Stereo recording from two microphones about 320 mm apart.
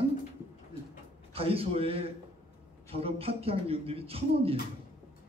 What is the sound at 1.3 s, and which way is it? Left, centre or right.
A man's voice, centre.